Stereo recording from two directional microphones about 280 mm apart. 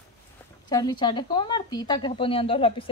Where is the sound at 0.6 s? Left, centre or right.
Centre.